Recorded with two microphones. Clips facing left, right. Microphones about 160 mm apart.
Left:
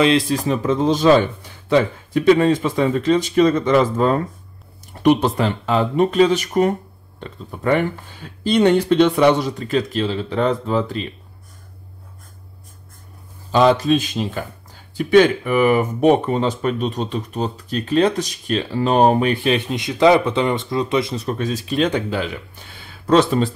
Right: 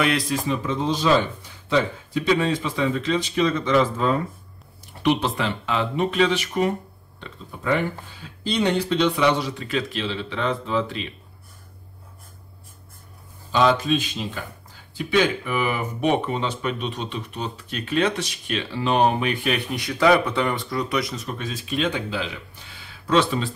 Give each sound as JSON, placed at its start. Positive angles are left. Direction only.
{"t": 0.0, "sound": "speech", "side_deg": 25}
{"t": 0.5, "sound": "a man's voice", "side_deg": 45}
{"t": 13.5, "sound": "a man's voice", "side_deg": 40}